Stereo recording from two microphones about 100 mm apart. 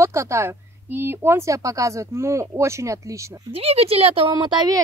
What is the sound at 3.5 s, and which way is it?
Speech, 90° right.